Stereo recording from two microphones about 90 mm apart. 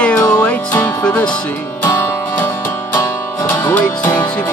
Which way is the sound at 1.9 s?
30° left (ahead or behind).